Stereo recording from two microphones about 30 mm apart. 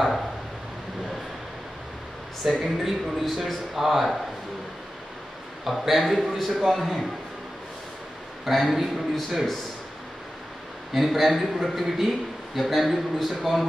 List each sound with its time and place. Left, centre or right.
2.4 s speech: right
2.9 s speech: centre
5.7 s speech: centre
8.5 s speech: centre
10.9 s speech: centre